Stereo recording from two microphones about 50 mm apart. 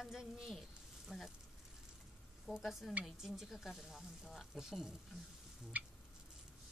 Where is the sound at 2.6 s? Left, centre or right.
Centre.